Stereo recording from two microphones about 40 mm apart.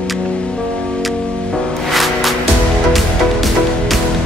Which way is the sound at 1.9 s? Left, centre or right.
Centre.